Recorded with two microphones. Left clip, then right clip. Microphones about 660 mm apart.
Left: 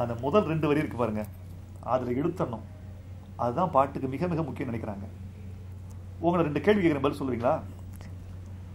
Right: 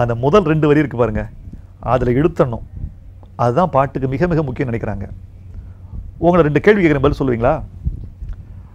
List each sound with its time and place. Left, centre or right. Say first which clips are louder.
0.0 s a man's voice: right 12 dB; right
6.2 s a man's voice: right 13 dB; right